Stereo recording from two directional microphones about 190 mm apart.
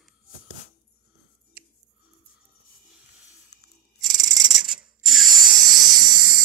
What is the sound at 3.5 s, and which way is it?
Scissors, 60° left (ahead or behind).